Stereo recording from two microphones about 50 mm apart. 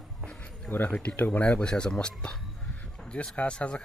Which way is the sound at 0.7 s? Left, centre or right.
Left.